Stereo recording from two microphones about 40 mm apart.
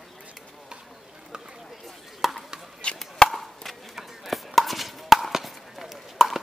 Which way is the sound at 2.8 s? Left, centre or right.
Left.